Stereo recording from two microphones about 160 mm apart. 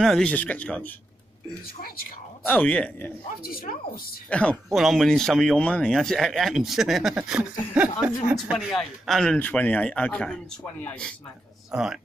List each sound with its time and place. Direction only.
0.0 s speech: 5° left (ahead or behind)
2.4 s speech: 10° left (ahead or behind)
3.4 s a woman's voice: 65° left (ahead or behind)
4.3 s speech: 5° left (ahead or behind)
11.7 s speech: 5° right (ahead or behind)